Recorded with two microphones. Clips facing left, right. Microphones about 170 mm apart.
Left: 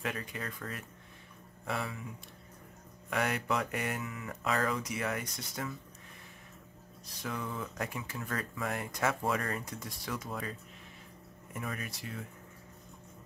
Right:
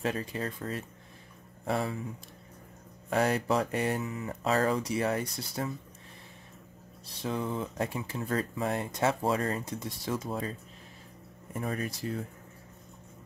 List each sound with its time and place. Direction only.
0.0 s speech: 30° right (ahead or behind)
3.1 s speech: 35° right (ahead or behind)
7.1 s speech: 30° right (ahead or behind)
11.5 s speech: 35° right (ahead or behind)